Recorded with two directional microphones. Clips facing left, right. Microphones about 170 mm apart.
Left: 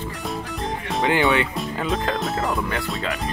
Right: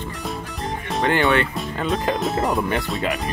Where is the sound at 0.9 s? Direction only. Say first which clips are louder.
Right 1 dB; 5° left (ahead or behind).